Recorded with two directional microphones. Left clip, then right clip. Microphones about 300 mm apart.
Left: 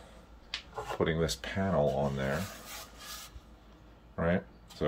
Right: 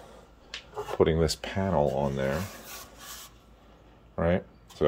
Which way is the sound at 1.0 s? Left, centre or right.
Right.